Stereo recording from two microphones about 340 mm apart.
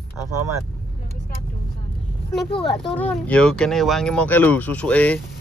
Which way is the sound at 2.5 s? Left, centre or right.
Centre.